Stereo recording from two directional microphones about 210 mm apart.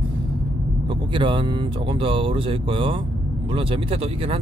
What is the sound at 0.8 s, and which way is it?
Speech, 25° right (ahead or behind).